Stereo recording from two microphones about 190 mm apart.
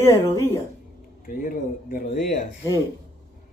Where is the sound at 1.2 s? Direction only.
45° left (ahead or behind).